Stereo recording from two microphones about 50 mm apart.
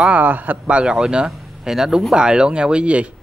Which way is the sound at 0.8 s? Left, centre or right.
Centre.